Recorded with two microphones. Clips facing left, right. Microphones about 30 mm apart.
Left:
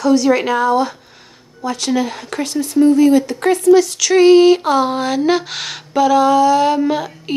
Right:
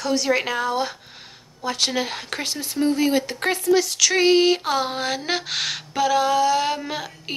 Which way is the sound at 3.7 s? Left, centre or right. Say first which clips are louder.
Left 8 dB; centre.